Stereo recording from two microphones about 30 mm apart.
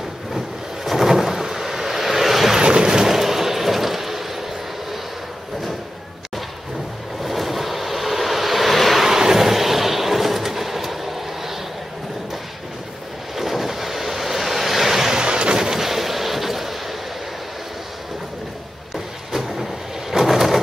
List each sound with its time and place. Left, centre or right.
0.8 s vehicle: centre
2.5 s vehicle: right
3.2 s a sound: centre
7.2 s vehicle: centre
9.0 s vehicle: centre
13.4 s waves: centre
15.1 s a sound: right
15.5 s artillery fire: centre
20.1 s vehicle: centre